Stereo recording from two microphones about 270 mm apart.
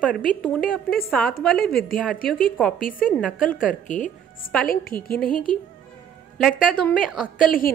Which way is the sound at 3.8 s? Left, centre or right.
Left.